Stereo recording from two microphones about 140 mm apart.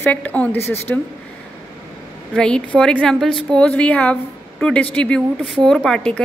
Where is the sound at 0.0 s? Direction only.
10° left (ahead or behind).